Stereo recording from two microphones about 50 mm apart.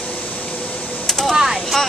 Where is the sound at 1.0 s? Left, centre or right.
Centre.